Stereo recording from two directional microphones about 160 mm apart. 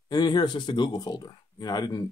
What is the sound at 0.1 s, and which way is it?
Speech, 25° left (ahead or behind).